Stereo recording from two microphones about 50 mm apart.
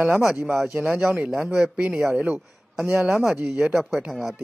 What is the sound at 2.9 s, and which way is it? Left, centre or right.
Speech, centre.